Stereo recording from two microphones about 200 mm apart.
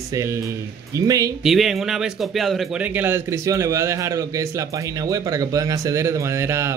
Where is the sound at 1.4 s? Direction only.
Centre (ahead or behind).